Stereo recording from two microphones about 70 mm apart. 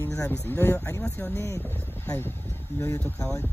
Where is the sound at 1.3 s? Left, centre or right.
Left.